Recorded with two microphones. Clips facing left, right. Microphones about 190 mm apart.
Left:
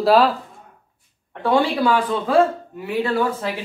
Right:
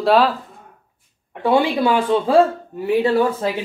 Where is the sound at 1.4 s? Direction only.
15° right (ahead or behind); by 2.9 s 30° right (ahead or behind).